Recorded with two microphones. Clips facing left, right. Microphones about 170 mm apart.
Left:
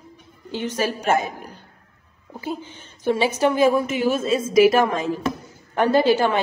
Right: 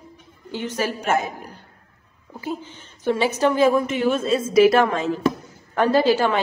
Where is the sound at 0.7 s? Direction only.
25° left (ahead or behind).